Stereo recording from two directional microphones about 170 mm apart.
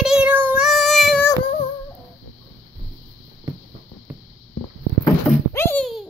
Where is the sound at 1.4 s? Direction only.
35° left (ahead or behind).